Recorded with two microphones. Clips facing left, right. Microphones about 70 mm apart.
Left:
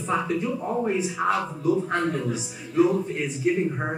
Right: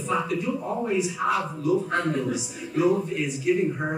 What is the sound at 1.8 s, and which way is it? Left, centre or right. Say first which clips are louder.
Speech: even; left.